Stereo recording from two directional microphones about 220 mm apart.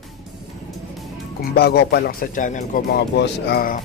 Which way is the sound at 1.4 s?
45° left (ahead or behind).